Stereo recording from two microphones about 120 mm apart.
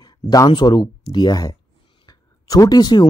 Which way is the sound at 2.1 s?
30° left (ahead or behind).